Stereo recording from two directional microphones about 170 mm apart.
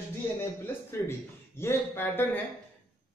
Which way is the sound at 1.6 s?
10° left (ahead or behind).